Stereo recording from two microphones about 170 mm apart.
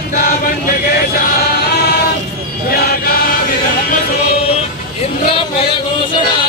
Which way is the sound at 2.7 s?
65° left (ahead or behind).